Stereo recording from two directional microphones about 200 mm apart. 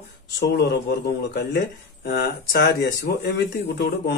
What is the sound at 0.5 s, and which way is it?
Speech, 55° left (ahead or behind).